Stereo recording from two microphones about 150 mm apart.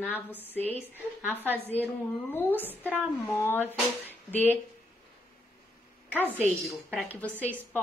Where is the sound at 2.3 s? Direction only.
15° left (ahead or behind).